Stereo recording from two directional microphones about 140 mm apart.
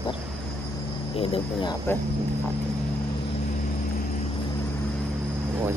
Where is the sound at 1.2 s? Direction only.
40° left (ahead or behind).